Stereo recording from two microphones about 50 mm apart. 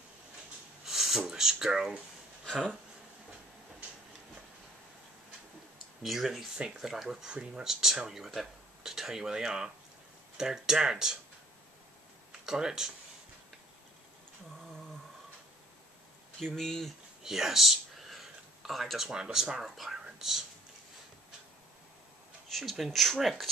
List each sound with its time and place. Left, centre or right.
0.8 s a sound: centre
2.4 s speech: centre
6.0 s speech: centre
7.2 s speech: right
7.6 s speech: centre
12.3 s speech: centre
16.3 s speech: centre
17.2 s a sound: centre
19.0 s speech: centre
19.6 s speech: centre
22.5 s speech: centre